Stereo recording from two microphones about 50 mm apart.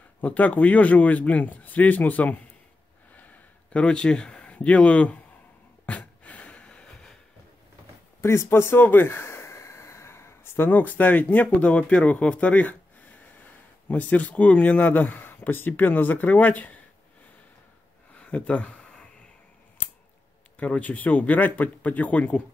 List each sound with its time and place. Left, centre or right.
0.2 s a man's voice: left
3.2 s a sound: left
3.8 s speech: centre
4.4 s speech: left
5.9 s a sound: left
8.2 s speech: left
8.5 s speech: left
8.7 s a sound: left
10.7 s a man's voice: left
13.8 s a man's voice: left
18.2 s a sound: left
20.5 s a man's voice: left